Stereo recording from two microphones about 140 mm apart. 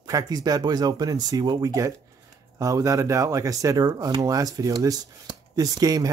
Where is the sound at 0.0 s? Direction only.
25° right (ahead or behind).